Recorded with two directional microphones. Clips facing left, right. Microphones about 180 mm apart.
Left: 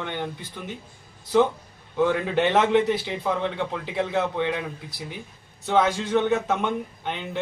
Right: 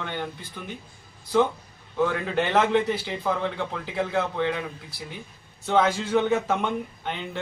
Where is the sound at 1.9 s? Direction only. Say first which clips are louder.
Left 2 dB; 20° left (ahead or behind).